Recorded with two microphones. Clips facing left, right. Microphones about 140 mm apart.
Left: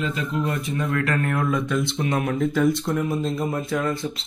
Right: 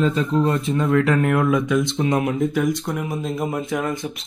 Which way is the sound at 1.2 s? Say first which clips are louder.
Right 5 dB; 10° right (ahead or behind).